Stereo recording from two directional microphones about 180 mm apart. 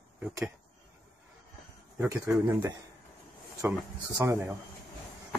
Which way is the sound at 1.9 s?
15° right (ahead or behind).